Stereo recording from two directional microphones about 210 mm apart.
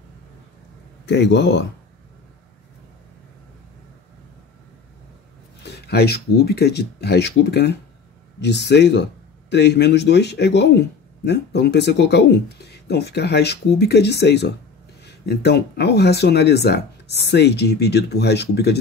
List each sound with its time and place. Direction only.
1.0 s speech: 55° left (ahead or behind)
5.6 s speech: 50° left (ahead or behind)